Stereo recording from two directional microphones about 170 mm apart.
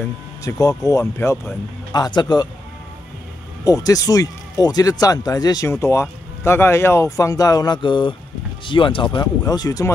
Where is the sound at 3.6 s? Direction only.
20° left (ahead or behind).